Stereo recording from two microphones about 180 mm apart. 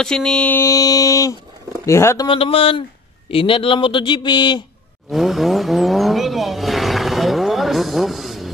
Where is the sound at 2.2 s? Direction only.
30° left (ahead or behind).